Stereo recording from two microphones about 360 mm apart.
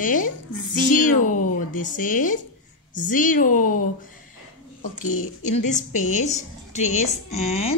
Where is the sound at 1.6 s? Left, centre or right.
Left.